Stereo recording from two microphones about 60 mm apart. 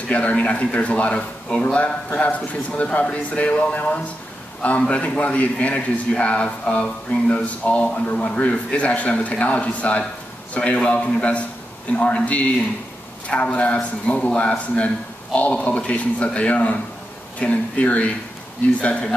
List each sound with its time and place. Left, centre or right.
0.1 s a man's voice: left